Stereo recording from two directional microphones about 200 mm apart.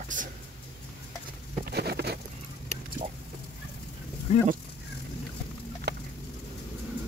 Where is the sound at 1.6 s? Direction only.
50° right (ahead or behind).